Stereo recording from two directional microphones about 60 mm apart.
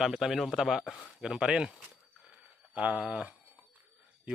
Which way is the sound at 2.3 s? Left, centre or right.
Right.